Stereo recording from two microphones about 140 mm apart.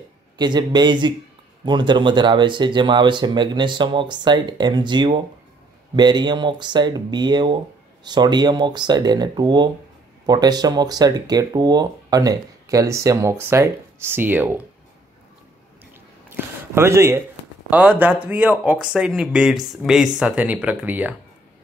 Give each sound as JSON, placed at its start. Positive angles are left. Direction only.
{"t": 0.4, "sound": "speech", "side_deg": -30}
{"t": 16.3, "sound": "a sound", "side_deg": -15}
{"t": 17.6, "sound": "speech", "side_deg": -10}